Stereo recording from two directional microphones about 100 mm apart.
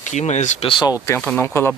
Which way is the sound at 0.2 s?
80° left.